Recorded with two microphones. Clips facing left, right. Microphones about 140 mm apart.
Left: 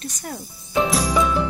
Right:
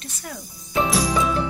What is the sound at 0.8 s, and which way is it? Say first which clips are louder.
Music: left 1 dB; centre (ahead or behind).